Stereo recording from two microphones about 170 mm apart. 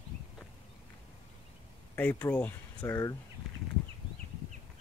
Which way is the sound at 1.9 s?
10° left (ahead or behind).